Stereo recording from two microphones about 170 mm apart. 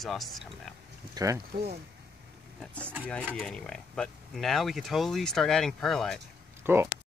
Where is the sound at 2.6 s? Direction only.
5° left (ahead or behind).